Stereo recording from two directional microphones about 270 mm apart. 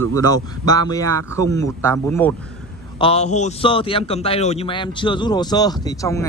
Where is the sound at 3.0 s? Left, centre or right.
Left.